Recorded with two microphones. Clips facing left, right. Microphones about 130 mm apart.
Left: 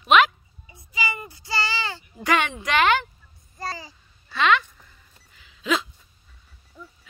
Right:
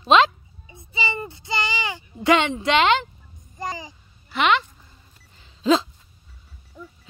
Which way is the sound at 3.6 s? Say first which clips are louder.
Right 2 dB; 20° right (ahead or behind).